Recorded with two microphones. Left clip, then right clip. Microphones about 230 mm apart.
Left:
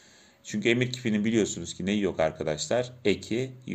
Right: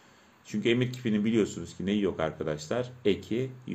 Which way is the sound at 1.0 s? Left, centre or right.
Left.